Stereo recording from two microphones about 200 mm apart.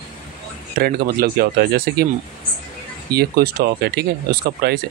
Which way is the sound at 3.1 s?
50° right (ahead or behind).